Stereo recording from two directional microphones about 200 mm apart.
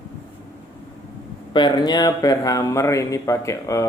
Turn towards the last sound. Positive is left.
turn(degrees=15)  # may be behind; listen again after turning